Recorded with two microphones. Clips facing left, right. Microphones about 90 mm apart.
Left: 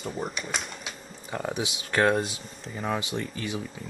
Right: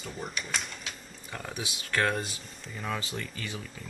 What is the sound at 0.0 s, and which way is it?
Speech, centre (ahead or behind).